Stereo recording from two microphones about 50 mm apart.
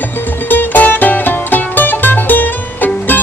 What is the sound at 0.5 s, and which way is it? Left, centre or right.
Music, left.